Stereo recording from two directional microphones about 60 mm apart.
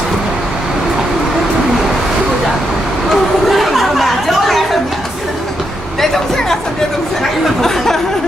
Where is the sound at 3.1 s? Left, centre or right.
Centre.